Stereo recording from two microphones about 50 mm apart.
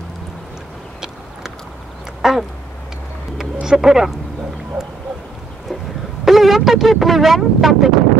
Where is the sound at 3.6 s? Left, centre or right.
Centre.